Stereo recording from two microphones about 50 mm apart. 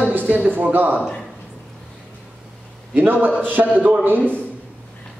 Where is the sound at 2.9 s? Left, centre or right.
Right.